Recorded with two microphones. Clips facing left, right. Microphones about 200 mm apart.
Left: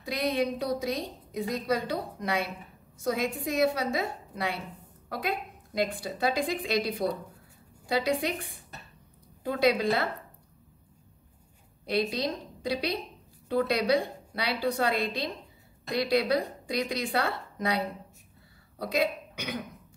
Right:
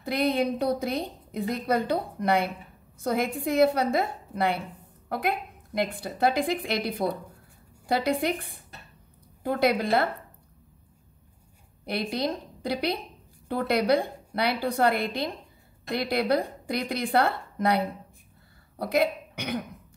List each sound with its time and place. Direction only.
0.0 s a woman's voice: 60° right (ahead or behind)
11.8 s a woman's voice: 60° right (ahead or behind)